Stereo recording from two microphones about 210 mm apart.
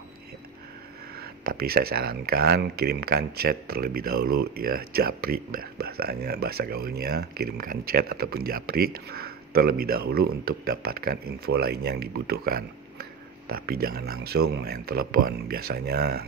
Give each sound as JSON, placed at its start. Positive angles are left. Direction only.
{"t": 1.1, "sound": "speech", "side_deg": -45}